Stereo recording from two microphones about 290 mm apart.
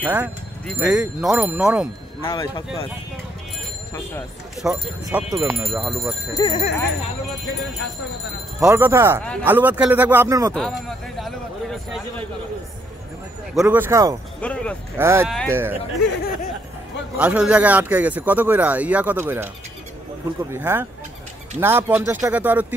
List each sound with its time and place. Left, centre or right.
0.0 s speech: centre
2.2 s speech: centre
4.6 s speech: centre
6.3 s speech: centre
8.5 s speech: centre
10.5 s speech: centre
13.6 s speech: centre
14.4 s speech: centre
15.0 s speech: centre
17.2 s speech: centre
20.5 s speech: centre